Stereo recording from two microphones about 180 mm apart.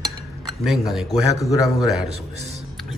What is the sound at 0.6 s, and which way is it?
Speech, centre (ahead or behind).